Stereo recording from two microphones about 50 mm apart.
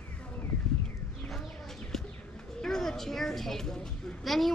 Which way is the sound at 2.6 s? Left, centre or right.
Centre.